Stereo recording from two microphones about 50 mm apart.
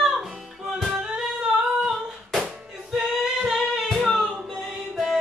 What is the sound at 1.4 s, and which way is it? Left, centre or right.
Singing, centre.